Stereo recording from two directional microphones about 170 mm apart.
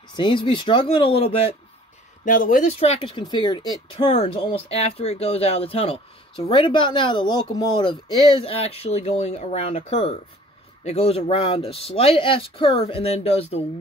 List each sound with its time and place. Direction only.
0.1 s speech: 30° left (ahead or behind)
2.2 s speech: 50° left (ahead or behind); by 4.1 s 25° left (ahead or behind)
4.1 s speech: 35° left (ahead or behind)